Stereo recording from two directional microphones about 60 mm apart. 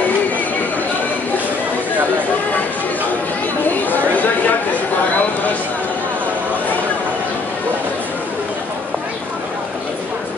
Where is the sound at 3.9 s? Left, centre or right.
Left.